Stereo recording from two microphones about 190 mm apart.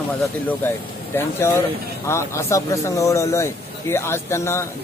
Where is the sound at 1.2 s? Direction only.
15° left (ahead or behind).